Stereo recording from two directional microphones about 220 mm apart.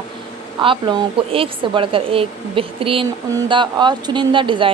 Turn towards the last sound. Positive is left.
turn(degrees=-20)  # may be behind; listen again after turning